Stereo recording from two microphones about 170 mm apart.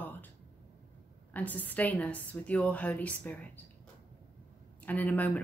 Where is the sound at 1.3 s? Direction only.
10° left (ahead or behind).